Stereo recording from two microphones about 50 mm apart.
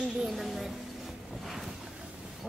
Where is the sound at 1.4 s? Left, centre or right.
Centre.